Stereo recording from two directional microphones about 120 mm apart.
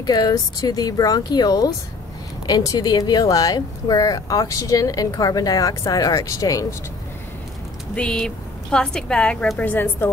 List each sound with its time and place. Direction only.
0.0 s speech: 35° left (ahead or behind)
7.9 s a woman's voice: 5° left (ahead or behind)